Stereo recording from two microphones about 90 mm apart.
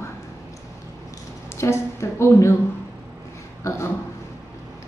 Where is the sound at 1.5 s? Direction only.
30° left (ahead or behind).